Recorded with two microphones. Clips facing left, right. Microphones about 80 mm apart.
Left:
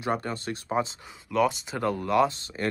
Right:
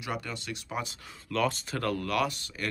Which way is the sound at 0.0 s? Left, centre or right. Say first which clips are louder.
Left 7 dB; left.